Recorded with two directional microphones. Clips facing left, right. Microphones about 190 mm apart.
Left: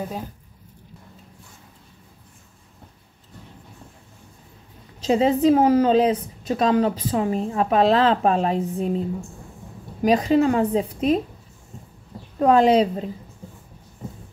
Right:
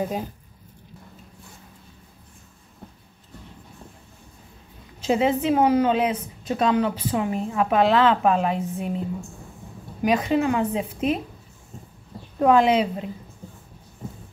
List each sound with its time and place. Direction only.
5.0 s a woman's voice: 35° left (ahead or behind)
10.0 s a woman's voice: 35° left (ahead or behind)
12.4 s a woman's voice: 35° left (ahead or behind)